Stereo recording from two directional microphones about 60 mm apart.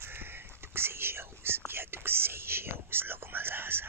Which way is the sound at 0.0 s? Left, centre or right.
Right.